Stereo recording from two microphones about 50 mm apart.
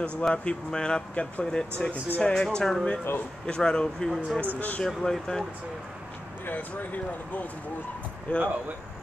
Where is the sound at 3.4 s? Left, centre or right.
Centre.